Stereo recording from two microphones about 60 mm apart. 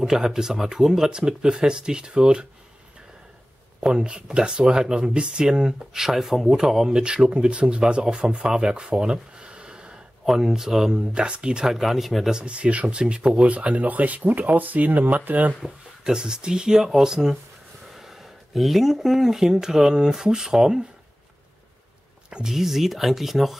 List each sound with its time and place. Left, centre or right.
0.0 s speech: centre
3.8 s speech: centre
11.0 s speech: centre
15.6 s speech: centre
22.3 s speech: centre